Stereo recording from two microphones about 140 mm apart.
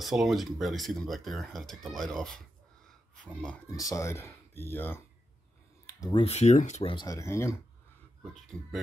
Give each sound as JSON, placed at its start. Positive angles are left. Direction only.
{"t": 0.0, "sound": "speech", "side_deg": 0}
{"t": 3.7, "sound": "speech", "side_deg": 25}
{"t": 5.9, "sound": "a sound", "side_deg": 25}
{"t": 6.2, "sound": "speech", "side_deg": 50}
{"t": 6.8, "sound": "speech", "side_deg": 40}
{"t": 7.1, "sound": "speech", "side_deg": 20}
{"t": 8.5, "sound": "speech", "side_deg": 5}